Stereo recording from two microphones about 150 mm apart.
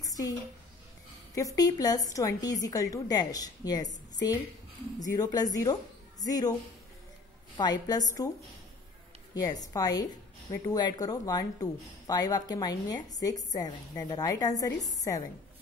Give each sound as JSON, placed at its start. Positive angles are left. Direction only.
{"t": 0.0, "sound": "a sound", "side_deg": 25}
{"t": 1.3, "sound": "a woman's voice", "side_deg": 20}
{"t": 7.5, "sound": "a woman's voice", "side_deg": 25}
{"t": 9.3, "sound": "a woman's voice", "side_deg": 25}